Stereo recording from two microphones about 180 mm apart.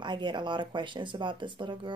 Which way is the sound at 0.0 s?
25° right (ahead or behind).